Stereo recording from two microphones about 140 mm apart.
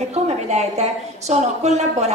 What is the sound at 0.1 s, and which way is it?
A woman's voice, 50° right (ahead or behind).